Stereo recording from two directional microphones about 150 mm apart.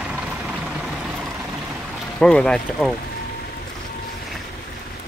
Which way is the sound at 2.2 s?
5° left (ahead or behind).